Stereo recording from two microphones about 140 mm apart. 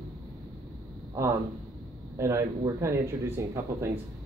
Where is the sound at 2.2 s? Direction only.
20° right (ahead or behind).